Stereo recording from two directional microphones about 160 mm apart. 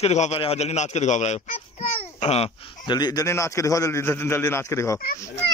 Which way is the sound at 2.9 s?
25° left (ahead or behind).